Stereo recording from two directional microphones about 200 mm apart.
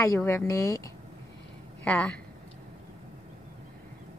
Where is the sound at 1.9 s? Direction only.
5° left (ahead or behind).